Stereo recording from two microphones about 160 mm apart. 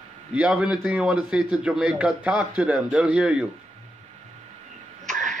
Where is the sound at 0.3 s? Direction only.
5° right (ahead or behind).